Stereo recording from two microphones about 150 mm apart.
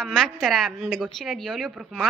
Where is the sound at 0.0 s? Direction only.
5° left (ahead or behind).